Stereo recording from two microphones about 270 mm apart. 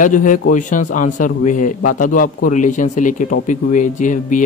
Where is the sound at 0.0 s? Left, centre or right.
Left.